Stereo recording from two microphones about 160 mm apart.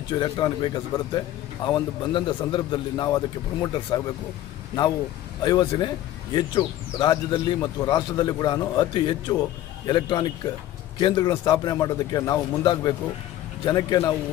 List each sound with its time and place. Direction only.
0.1 s a man's voice: 25° left (ahead or behind)
5.4 s a man's voice: 25° left (ahead or behind)